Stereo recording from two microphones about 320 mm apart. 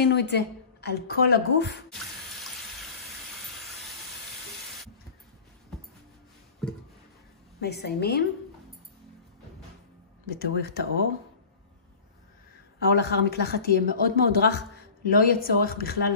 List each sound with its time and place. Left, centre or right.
0.0 s a woman's voice: left
7.6 s a woman's voice: left
10.4 s speech: left
12.8 s speech: left